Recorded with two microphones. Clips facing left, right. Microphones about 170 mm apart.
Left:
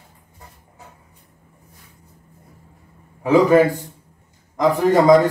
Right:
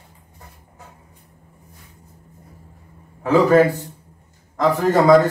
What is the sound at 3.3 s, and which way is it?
Speech, 15° left (ahead or behind).